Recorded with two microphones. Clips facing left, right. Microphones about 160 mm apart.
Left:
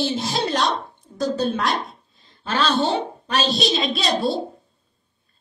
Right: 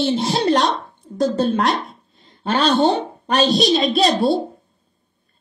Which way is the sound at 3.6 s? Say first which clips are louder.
Right 6 dB; 50° right (ahead or behind).